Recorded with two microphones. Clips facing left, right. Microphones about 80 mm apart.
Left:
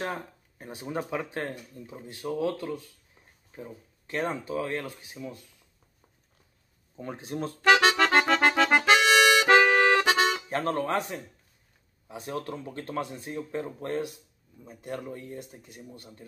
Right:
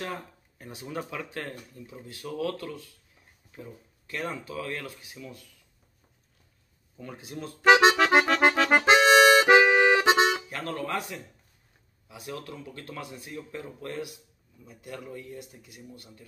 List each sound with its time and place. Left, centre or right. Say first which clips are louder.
0.0 s speech: left 2 dB; left
7.0 s speech: left 5 dB; left
7.6 s accordion: right 3 dB; centre
8.0 s accordion: right 1 dB; centre
8.8 s accordion: right 5 dB; right
9.5 s music: right 1 dB; centre
10.0 s music: right 2 dB; centre
10.5 s speech: left 5 dB; left